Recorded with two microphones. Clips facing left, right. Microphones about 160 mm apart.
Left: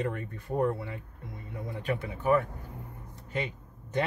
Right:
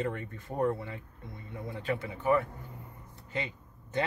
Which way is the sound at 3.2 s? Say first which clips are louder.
Left 3 dB; 20° right (ahead or behind).